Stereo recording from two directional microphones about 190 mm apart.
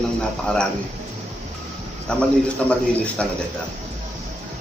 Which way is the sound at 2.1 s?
5° left (ahead or behind).